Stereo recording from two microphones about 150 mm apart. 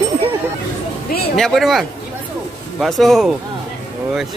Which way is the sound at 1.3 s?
Centre (ahead or behind).